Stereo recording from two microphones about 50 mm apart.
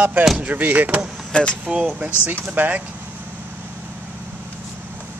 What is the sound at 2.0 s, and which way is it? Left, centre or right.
Speech, right.